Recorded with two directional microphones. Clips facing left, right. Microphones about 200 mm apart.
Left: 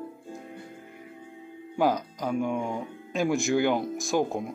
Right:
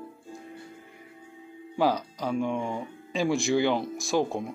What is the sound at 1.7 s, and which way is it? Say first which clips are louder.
Speech: even; 5° left (ahead or behind).